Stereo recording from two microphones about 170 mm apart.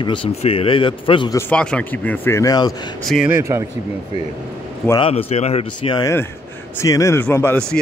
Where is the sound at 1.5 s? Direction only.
5° left (ahead or behind); by 2.7 s 20° left (ahead or behind).